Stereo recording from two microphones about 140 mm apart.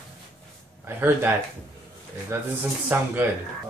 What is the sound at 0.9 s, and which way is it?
Speech, 15° right (ahead or behind).